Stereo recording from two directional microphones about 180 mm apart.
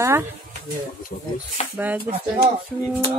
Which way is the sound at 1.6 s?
35° left (ahead or behind).